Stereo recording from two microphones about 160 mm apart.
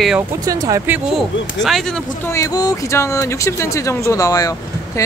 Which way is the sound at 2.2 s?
20° left (ahead or behind).